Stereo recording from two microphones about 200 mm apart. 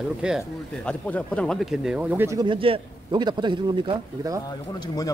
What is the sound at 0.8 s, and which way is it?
Speech, 5° left (ahead or behind).